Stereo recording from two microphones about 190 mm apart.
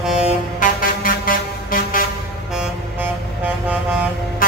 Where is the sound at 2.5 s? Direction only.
5° right (ahead or behind).